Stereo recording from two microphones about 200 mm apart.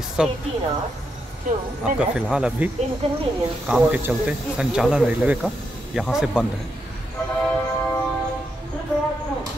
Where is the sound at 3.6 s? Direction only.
5° right (ahead or behind).